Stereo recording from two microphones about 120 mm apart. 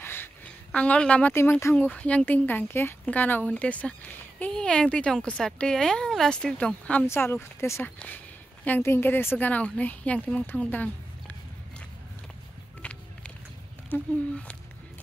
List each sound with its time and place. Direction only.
0.0 s a sound: 20° left (ahead or behind)
0.7 s speech: 10° left (ahead or behind)
1.3 s speech: 20° left (ahead or behind)
12.8 s vehicle: 10° left (ahead or behind)
13.8 s speech: 15° left (ahead or behind)